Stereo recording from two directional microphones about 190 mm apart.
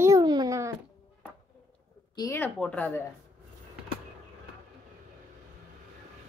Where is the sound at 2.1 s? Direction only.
15° left (ahead or behind).